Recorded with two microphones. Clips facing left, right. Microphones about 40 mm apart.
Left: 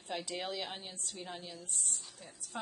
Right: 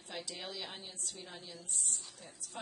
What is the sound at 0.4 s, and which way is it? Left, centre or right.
Speech, centre.